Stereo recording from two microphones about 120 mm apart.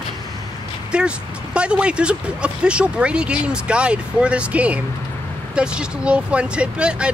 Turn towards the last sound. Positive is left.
turn(degrees=-10)  # may be behind; listen again after turning